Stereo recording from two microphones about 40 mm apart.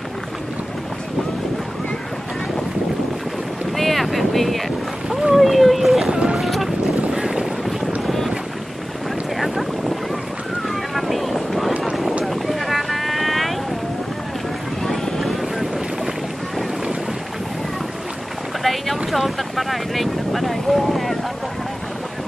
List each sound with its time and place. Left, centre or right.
3.7 s boat: centre
6.1 s boat: right
6.4 s boat: centre
10.7 s boat: centre
11.8 s a sound: centre
12.3 s boat: centre
14.8 s boat: centre
18.6 s boat: centre